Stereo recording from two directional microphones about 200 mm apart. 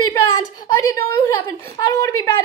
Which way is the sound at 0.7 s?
15° left (ahead or behind).